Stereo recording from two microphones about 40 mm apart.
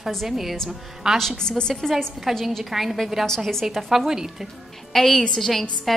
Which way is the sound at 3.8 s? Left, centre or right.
Centre.